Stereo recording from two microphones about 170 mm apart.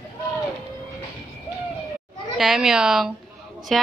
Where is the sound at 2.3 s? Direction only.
Centre (ahead or behind).